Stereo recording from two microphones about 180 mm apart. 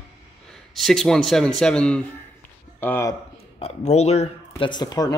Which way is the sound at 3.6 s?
35° left (ahead or behind).